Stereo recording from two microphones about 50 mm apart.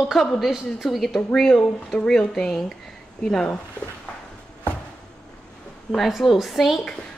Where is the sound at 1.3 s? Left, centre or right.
Centre.